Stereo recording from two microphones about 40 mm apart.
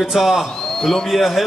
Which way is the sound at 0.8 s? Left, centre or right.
Centre.